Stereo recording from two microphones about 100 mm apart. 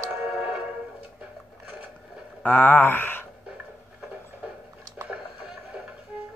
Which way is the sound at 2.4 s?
20° left (ahead or behind).